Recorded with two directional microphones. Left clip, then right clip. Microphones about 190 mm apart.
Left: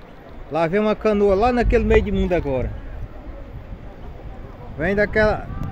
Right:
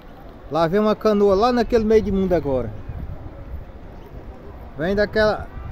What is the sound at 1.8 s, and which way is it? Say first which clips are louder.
Speech: right 1 dB; 90° right.